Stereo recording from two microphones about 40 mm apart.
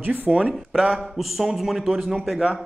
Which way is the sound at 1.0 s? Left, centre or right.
Centre.